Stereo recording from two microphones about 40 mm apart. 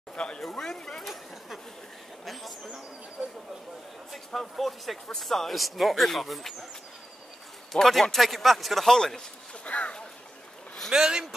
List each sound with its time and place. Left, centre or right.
0.1 s a sound: left
0.4 s speech: centre
2.6 s speech: right
4.1 s speech: centre
7.7 s speech: centre
8.8 s speech: centre
9.7 s speech: left
10.9 s speech: centre